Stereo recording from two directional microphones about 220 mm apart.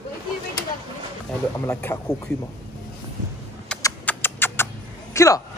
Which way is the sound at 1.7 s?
10° left (ahead or behind).